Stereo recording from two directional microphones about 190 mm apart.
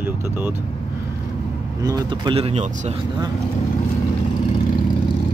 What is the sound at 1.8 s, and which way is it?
Speech, 20° right (ahead or behind).